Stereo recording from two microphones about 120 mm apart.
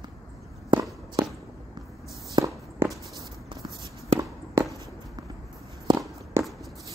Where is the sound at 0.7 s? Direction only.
35° right (ahead or behind).